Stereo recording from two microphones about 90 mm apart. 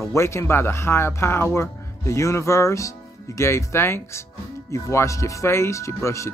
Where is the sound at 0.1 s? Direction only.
30° left (ahead or behind).